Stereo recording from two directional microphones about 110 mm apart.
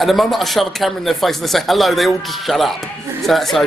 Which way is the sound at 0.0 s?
Centre (ahead or behind).